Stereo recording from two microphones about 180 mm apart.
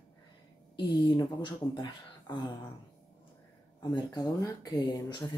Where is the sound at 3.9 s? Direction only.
20° left (ahead or behind).